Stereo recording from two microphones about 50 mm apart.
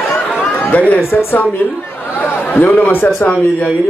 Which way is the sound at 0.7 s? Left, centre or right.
Left.